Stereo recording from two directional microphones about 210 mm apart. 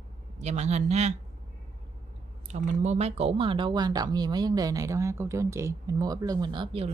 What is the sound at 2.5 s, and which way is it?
Speech, 35° right (ahead or behind).